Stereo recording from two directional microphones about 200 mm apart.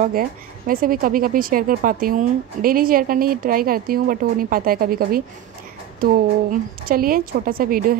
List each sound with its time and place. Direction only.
0.0 s speech: 45° right (ahead or behind)